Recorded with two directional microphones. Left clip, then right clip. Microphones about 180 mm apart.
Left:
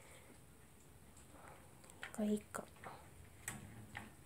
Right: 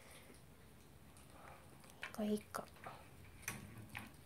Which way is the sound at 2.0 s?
15° left (ahead or behind).